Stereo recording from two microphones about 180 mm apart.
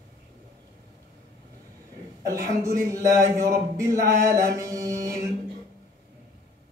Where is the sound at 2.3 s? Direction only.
15° right (ahead or behind).